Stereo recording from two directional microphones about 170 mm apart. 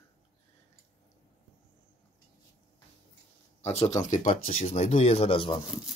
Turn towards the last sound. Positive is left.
turn(degrees=30)  # may be behind; listen again after turning